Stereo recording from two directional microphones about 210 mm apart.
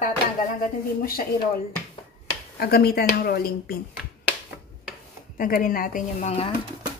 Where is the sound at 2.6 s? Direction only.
45° left (ahead or behind).